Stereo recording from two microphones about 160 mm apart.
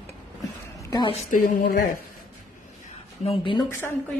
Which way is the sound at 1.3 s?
60° left (ahead or behind).